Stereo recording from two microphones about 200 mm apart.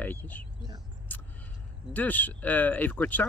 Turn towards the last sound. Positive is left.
turn(degrees=10)  # may be behind; listen again after turning